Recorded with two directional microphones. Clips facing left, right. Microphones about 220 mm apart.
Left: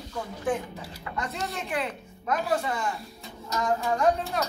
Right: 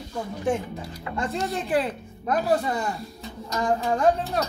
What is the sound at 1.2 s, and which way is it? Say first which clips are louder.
Speech: right 6 dB; 30° right (ahead or behind).